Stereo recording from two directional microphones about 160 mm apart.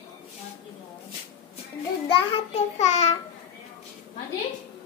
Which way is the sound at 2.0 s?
45° left (ahead or behind).